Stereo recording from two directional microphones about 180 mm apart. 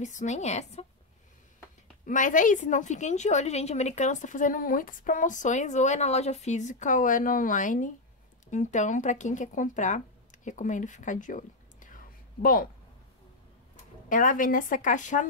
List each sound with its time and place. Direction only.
0.0 s a woman's voice: 45° left (ahead or behind)
2.0 s a woman's voice: 45° left (ahead or behind)
14.0 s a woman's voice: 45° left (ahead or behind)